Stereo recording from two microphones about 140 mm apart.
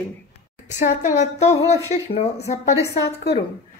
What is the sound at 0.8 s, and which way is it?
A woman's voice, 60° left (ahead or behind).